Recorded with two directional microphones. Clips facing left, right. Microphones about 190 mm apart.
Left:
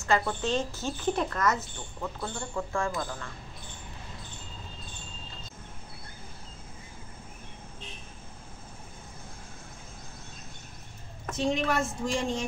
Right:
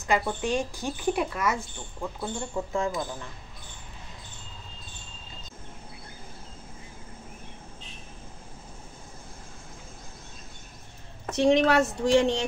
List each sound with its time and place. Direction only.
0.0 s speech: 15° right (ahead or behind)
11.3 s speech: 75° right (ahead or behind)